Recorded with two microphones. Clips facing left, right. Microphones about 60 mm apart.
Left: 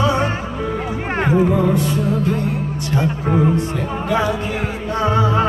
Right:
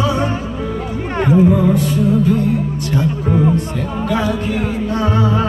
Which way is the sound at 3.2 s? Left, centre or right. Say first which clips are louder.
Right 1 dB; centre.